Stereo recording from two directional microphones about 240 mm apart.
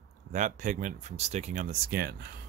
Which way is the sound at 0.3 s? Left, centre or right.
Right.